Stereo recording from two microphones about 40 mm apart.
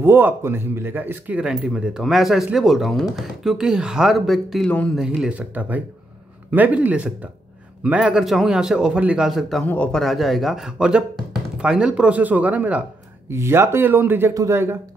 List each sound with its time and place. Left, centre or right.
0.0 s speech: right
0.9 s speech: right
1.4 s speech: right
2.0 s speech: centre
3.5 s speech: centre
4.1 s speech: centre
4.6 s speech: left
4.9 s speech: centre
5.3 s speech: right
8.2 s speech: centre
9.3 s speech: centre
10.8 s speech: right
12.2 s speech: right
13.3 s a man's voice: right